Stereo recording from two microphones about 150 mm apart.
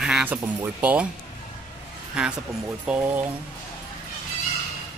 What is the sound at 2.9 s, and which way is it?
Speech, 5° right (ahead or behind).